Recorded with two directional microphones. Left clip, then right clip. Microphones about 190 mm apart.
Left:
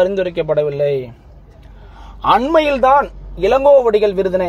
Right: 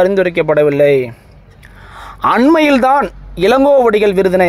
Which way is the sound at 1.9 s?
25° right (ahead or behind).